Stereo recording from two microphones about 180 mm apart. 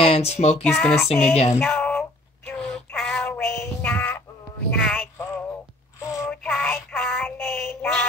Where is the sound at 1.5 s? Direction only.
5° left (ahead or behind).